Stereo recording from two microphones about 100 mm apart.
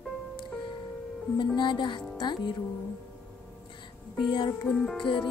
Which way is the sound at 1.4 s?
50° left (ahead or behind).